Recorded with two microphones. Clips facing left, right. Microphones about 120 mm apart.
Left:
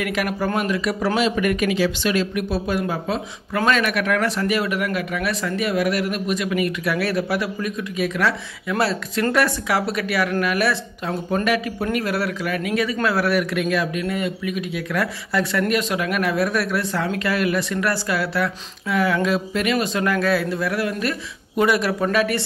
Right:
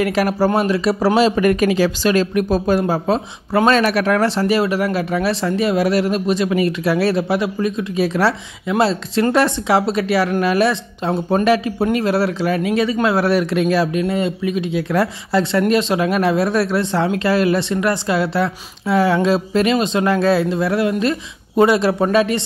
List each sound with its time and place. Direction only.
0.0 s speech: 35° right (ahead or behind)